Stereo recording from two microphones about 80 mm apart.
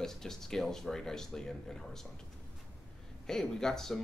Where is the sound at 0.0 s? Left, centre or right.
Centre.